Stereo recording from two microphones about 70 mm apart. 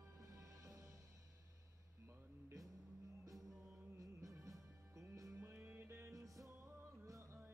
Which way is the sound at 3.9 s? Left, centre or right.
Right.